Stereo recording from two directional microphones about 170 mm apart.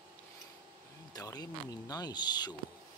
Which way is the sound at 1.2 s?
20° left (ahead or behind).